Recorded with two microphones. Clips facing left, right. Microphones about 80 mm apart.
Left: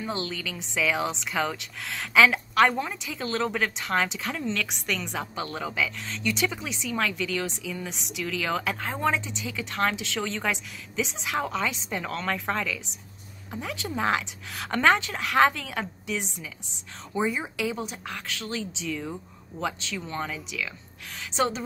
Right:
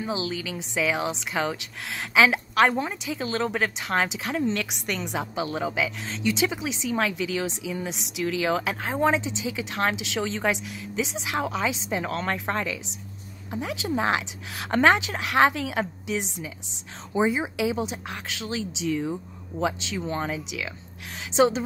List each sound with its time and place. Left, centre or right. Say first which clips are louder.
0.0 s a woman's voice: right 2 dB; centre
3.1 s a woman's voice: even; centre
11.1 s a woman's voice: right 1 dB; centre
12.2 s a woman's voice: right 1 dB; right